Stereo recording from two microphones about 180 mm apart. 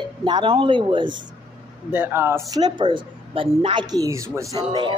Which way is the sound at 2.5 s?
25° right (ahead or behind).